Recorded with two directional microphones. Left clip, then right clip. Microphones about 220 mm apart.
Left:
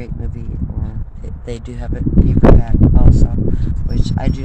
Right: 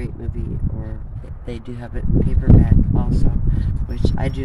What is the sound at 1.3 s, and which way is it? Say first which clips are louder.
Speech: left 4 dB; 35° left (ahead or behind).